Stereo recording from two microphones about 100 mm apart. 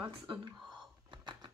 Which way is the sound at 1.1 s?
50° right (ahead or behind).